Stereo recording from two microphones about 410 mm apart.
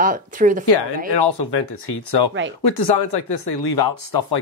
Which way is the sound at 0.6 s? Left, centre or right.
Left.